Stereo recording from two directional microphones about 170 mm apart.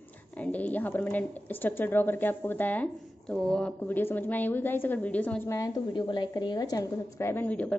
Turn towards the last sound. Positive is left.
turn(degrees=10)  # may be behind; listen again after turning